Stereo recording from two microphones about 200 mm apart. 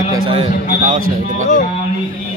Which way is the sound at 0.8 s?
40° right (ahead or behind).